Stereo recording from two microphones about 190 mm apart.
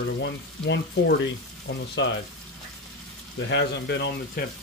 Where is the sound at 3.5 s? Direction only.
65° left (ahead or behind).